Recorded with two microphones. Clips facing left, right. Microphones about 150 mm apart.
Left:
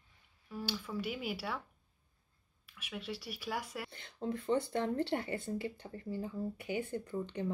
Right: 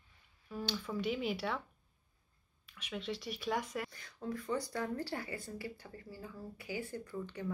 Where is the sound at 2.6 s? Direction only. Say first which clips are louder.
Right 2 dB; 5° left (ahead or behind).